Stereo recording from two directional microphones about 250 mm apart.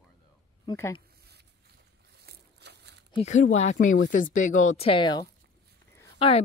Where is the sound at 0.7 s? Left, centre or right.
Centre.